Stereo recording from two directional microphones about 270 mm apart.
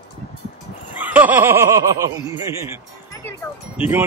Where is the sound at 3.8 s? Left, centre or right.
Centre.